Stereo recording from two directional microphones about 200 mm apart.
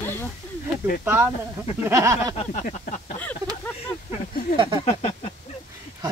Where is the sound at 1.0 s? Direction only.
10° right (ahead or behind).